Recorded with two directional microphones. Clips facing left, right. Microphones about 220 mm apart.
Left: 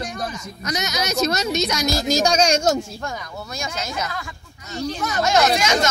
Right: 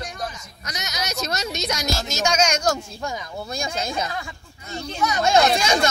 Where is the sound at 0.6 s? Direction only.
90° left.